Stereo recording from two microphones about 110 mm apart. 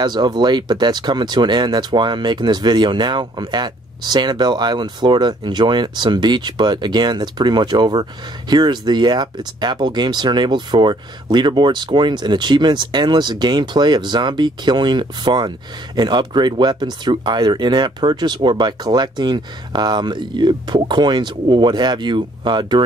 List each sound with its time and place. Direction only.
0.0 s speech: 40° right (ahead or behind)